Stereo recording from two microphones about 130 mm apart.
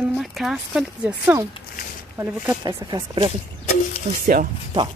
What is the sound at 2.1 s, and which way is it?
Speech, 20° right (ahead or behind).